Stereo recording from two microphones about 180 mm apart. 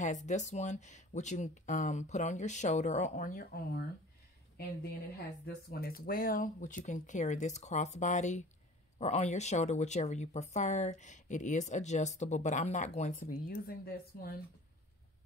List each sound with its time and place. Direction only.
0.0 s speech: 45° left (ahead or behind)
5.4 s speech: 55° left (ahead or behind)